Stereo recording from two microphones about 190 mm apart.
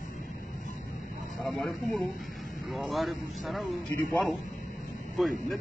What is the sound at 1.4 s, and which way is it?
Speech, centre (ahead or behind).